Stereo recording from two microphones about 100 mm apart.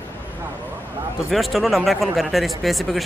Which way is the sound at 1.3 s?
Centre (ahead or behind).